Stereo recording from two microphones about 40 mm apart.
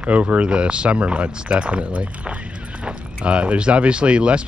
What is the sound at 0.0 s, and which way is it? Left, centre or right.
Speech, right.